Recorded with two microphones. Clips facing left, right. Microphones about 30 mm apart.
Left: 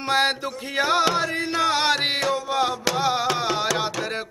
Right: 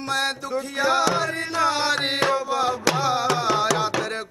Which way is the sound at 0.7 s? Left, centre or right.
Left.